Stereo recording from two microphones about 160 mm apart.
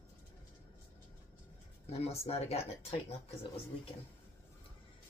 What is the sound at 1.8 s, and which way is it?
Speech, 40° left (ahead or behind).